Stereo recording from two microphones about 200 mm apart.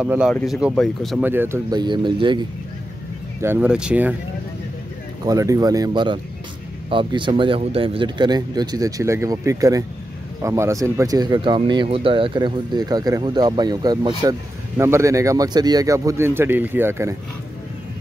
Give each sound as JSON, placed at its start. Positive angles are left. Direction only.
{"t": 0.0, "sound": "speech", "side_deg": -5}
{"t": 1.2, "sound": "speech", "side_deg": -10}
{"t": 3.3, "sound": "speech", "side_deg": -10}
{"t": 5.2, "sound": "speech", "side_deg": -15}